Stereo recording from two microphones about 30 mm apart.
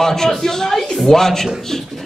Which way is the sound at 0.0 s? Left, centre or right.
Centre.